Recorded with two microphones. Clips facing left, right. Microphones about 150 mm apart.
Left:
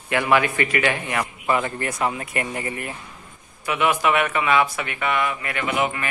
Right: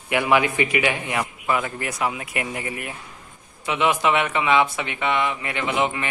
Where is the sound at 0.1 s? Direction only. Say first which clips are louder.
Even; 15° right (ahead or behind).